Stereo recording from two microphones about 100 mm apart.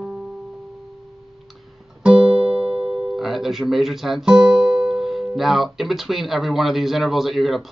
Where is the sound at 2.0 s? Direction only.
10° right (ahead or behind).